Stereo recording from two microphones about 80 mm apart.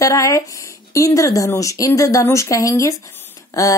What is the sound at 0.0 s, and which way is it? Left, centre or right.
Speech, left.